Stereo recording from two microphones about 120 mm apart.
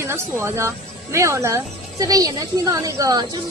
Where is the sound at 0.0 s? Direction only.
20° right (ahead or behind).